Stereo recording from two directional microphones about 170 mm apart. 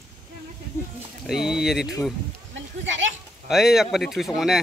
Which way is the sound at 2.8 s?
90° right.